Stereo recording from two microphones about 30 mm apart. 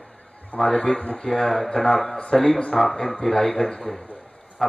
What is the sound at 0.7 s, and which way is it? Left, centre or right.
Speech, left.